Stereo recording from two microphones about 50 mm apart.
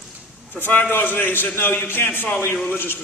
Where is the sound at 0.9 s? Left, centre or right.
Left.